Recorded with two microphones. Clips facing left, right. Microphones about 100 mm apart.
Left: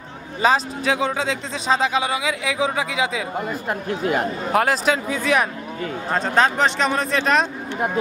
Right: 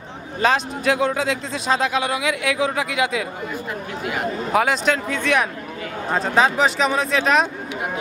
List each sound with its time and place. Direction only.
0.4 s speech: centre (ahead or behind)
4.0 s speech: 40° left (ahead or behind)
4.5 s speech: centre (ahead or behind)